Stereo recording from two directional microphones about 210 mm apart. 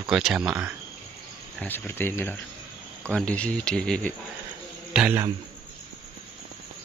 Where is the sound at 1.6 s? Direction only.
10° left (ahead or behind).